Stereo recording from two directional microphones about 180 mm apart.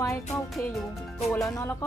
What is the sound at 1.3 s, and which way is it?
Speech, 15° left (ahead or behind).